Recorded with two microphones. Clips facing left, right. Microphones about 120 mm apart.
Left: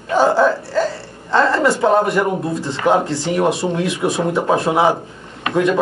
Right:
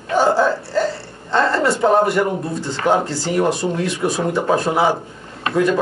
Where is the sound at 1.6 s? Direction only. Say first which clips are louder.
Left 1 dB; centre (ahead or behind).